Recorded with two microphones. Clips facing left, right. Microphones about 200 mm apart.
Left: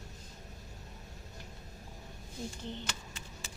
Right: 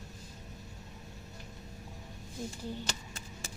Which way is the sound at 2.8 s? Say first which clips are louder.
Right 2 dB; 45° right (ahead or behind).